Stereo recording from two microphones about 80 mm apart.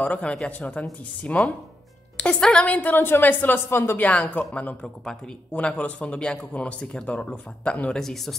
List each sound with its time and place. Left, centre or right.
0.0 s a woman's voice: centre